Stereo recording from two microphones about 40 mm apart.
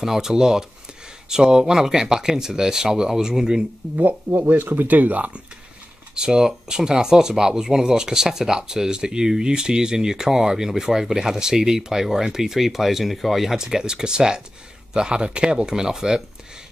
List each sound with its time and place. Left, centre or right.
0.0 s speech: centre
4.5 s speech: right
6.1 s speech: centre